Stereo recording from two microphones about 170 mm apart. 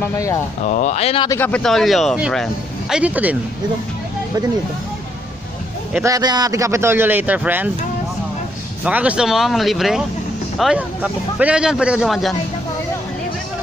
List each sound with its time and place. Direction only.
0.7 s speech: 45° left (ahead or behind)
1.4 s speech: 5° left (ahead or behind)
6.0 s a man's voice: 20° right (ahead or behind)
8.8 s speech: 5° right (ahead or behind)